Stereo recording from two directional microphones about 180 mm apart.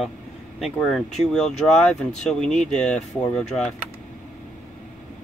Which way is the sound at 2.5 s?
40° left (ahead or behind).